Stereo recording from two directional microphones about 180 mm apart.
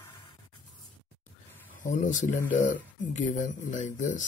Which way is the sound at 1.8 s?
45° left (ahead or behind).